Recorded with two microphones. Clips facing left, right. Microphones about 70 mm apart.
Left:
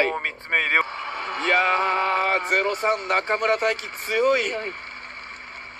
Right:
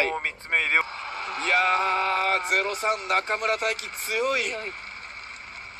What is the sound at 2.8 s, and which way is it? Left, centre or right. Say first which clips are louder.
Speech: left 3 dB; left.